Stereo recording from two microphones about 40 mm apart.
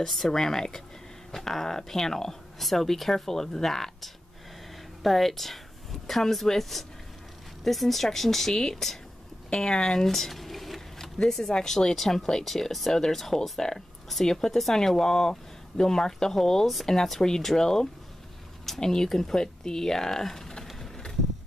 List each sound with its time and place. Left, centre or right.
0.0 s speech: centre
10.0 s a sound: centre
11.2 s speech: centre